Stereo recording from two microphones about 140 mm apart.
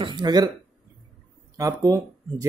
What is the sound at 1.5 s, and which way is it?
Speech, 25° right (ahead or behind).